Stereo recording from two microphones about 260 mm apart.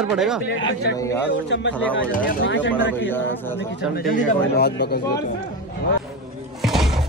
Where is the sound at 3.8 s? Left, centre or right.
Left.